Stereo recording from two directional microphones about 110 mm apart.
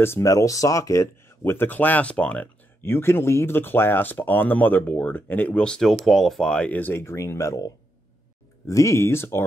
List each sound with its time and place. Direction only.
0.0 s speech: 25° left (ahead or behind)